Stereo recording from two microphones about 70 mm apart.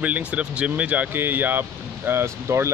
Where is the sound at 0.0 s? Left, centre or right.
Centre.